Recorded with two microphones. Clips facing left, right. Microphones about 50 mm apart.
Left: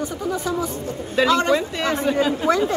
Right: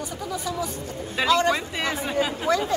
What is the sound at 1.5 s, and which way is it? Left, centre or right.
Speech, centre.